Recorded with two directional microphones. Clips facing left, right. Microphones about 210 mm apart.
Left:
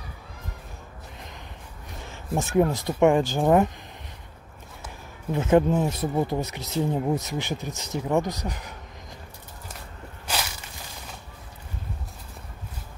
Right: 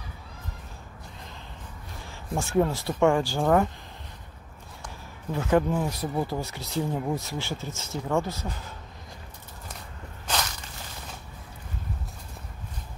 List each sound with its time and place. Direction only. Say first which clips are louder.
2.3 s speech: left 2 dB; 15° left (ahead or behind)
5.3 s speech: left 4 dB; 20° left (ahead or behind)